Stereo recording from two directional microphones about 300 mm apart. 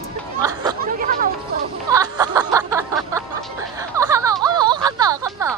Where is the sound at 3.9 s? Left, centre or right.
Centre.